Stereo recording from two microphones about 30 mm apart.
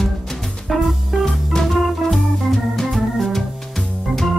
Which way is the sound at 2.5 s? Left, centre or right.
Centre.